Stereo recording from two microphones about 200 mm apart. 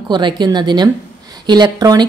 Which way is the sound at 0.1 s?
20° right (ahead or behind).